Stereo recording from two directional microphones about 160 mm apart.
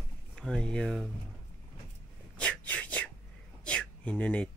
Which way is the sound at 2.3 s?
10° left (ahead or behind).